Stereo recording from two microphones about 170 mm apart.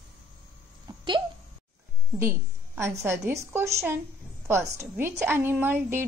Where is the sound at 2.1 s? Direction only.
15° right (ahead or behind).